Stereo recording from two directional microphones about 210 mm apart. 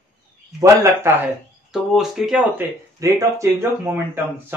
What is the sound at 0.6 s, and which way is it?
Speech, 10° right (ahead or behind).